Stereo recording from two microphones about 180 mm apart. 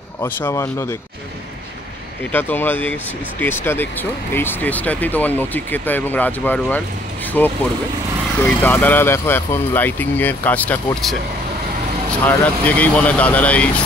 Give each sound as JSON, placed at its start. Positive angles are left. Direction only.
{"t": 0.2, "sound": "speech", "side_deg": 15}
{"t": 2.3, "sound": "speech", "side_deg": 10}
{"t": 12.3, "sound": "speech", "side_deg": 10}